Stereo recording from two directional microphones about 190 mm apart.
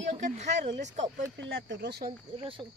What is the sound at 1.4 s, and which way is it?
Speech, 65° right (ahead or behind).